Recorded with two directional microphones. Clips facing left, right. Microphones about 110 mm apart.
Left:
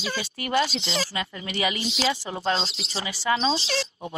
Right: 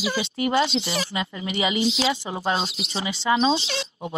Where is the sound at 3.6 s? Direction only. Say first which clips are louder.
Left 1 dB; 35° left (ahead or behind).